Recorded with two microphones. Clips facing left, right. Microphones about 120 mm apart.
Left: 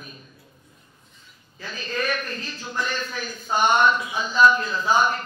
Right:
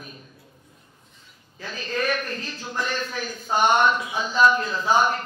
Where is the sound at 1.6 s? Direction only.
50° right (ahead or behind).